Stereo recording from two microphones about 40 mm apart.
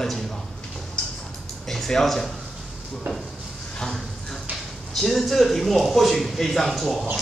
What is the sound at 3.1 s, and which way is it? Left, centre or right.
Dishes, right.